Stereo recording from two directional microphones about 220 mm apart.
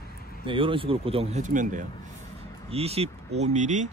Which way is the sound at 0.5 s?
25° right (ahead or behind).